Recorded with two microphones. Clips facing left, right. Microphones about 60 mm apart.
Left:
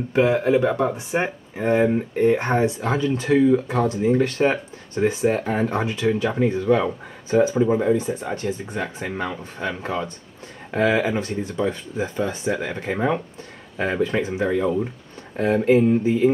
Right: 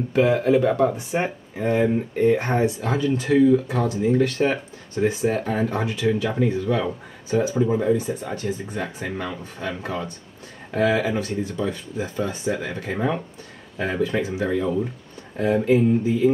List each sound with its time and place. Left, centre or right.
0.1 s speech: left